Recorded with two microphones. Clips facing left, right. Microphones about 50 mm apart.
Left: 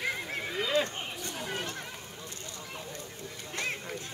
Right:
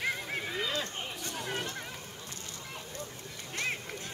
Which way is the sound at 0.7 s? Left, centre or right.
Left.